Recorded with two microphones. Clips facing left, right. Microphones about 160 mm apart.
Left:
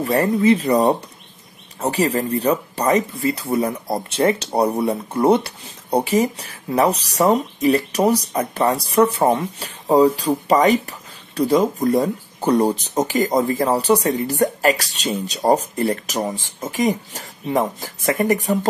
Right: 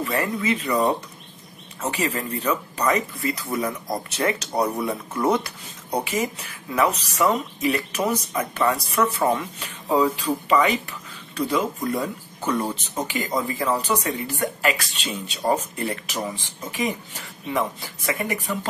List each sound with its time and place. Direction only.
0.0 s speech: 35° left (ahead or behind)